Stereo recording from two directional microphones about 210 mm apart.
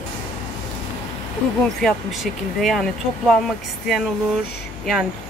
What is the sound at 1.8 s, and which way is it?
Speech, centre (ahead or behind).